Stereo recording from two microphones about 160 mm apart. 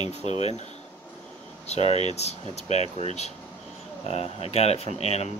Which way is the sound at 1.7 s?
40° left (ahead or behind).